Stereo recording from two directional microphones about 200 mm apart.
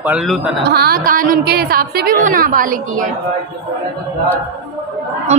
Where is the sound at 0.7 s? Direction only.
50° right (ahead or behind).